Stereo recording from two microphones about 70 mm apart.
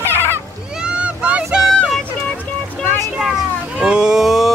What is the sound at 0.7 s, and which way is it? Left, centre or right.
Vehicle, centre.